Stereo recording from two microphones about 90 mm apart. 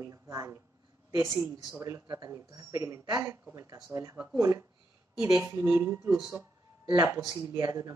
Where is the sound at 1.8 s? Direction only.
35° right (ahead or behind).